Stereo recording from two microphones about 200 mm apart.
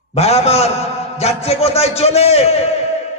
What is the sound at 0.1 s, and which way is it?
A man's voice, 30° left (ahead or behind).